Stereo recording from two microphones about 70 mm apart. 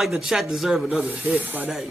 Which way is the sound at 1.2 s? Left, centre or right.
Right.